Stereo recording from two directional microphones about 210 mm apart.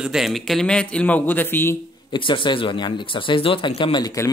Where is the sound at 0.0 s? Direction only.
Centre (ahead or behind).